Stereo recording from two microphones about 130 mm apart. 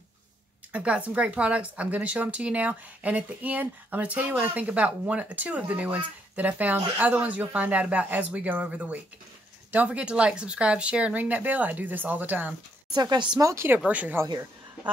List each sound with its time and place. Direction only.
0.7 s a woman's voice: 10° right (ahead or behind)
12.9 s speech: 35° right (ahead or behind)
13.5 s a woman's voice: 20° right (ahead or behind)